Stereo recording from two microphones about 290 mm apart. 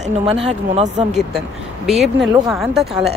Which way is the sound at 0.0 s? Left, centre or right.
Centre.